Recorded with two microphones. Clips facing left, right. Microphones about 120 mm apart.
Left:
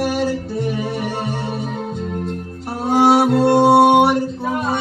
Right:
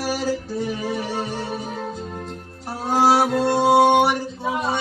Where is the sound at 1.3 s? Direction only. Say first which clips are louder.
Left 3 dB; centre (ahead or behind).